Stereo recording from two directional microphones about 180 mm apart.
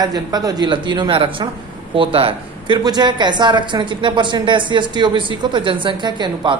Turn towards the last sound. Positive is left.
turn(degrees=-25)  # may be behind; listen again after turning